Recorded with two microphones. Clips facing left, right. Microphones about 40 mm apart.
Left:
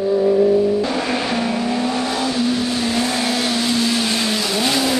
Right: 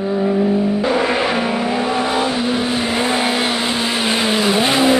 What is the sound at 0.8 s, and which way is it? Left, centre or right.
Vehicle, centre.